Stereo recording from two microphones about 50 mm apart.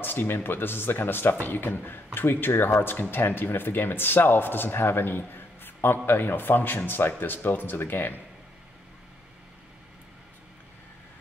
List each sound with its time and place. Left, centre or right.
0.0 s speech: left